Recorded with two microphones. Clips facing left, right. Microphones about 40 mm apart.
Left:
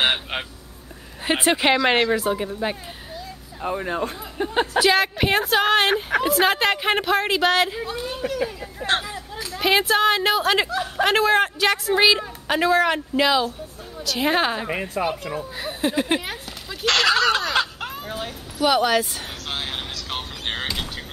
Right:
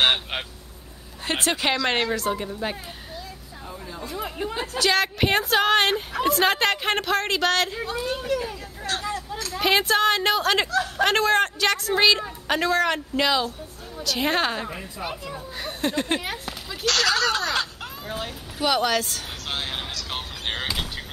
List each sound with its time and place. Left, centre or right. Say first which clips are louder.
0.0 s vehicle: even; centre
1.2 s speech: left 5 dB; centre
3.6 s speech: left 12 dB; left
4.7 s speech: left 2 dB; centre
8.8 s speech: left 7 dB; centre
9.5 s speech: left 2 dB; centre
10.7 s speech: even; centre
11.1 s speech: left 4 dB; centre
14.7 s a woman's voice: left 9 dB; left
15.5 s speech: left 2 dB; centre
16.8 s speech: left 4 dB; left
17.4 s laughter: left 3 dB; centre
18.1 s speech: left 1 dB; centre
19.5 s basketball bounce: even; centre